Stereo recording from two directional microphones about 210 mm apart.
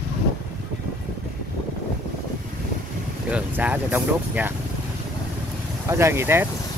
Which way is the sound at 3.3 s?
5° right (ahead or behind).